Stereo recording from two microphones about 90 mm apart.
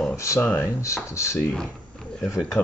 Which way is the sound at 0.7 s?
35° left (ahead or behind).